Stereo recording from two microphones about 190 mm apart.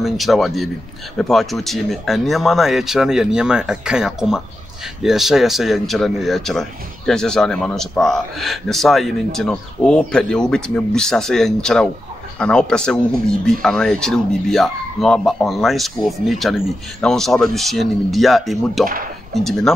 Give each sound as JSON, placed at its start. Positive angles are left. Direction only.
{"t": 0.0, "sound": "speech", "side_deg": 0}